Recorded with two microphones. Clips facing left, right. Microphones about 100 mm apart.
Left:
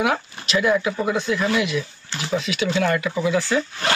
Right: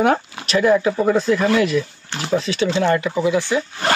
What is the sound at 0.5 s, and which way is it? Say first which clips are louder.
A man's voice: right 4 dB; 40° right (ahead or behind).